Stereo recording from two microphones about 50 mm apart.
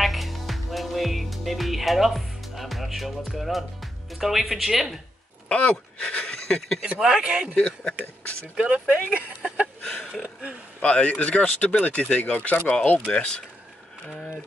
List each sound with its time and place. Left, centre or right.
0.0 s music: centre
5.5 s speech: left
7.0 s speech: centre
7.5 s speech: centre
8.5 s speech: right
9.8 s a sound: left
10.2 s speech: right
10.8 s speech: left
13.1 s speech: left